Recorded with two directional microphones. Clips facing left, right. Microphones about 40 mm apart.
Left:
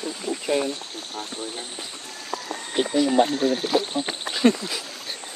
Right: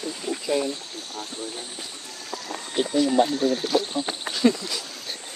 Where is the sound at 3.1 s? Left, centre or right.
Left.